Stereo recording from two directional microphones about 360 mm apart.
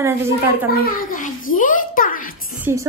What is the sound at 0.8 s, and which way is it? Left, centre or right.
A child's voice, left.